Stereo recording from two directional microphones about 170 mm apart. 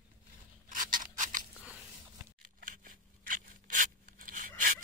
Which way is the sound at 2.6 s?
50° right (ahead or behind).